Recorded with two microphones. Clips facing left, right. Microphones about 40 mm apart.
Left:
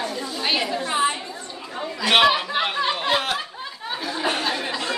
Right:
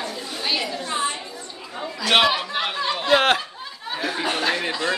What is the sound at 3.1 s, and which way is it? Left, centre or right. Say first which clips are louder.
Snicker: right 6 dB; right.